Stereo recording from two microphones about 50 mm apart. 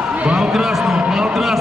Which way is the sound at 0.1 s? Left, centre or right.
Right.